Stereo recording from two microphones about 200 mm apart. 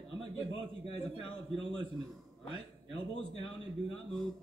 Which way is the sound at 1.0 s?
Centre (ahead or behind).